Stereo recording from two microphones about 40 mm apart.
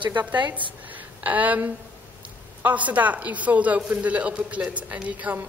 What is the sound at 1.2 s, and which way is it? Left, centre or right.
A man's voice, right.